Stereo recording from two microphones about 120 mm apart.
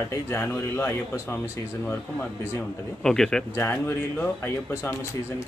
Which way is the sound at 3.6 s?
20° left (ahead or behind).